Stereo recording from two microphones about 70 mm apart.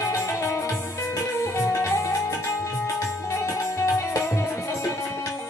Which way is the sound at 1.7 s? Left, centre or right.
Left.